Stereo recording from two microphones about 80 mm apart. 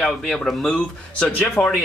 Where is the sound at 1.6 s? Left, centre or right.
Left.